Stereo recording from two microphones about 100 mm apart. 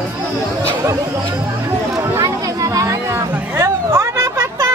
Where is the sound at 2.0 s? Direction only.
30° right (ahead or behind).